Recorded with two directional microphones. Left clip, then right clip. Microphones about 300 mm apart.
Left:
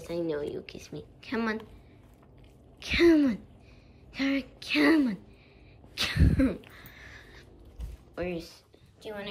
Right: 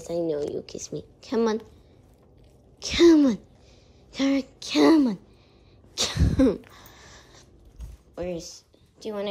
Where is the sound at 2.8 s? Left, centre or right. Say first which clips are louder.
Right 5 dB; centre.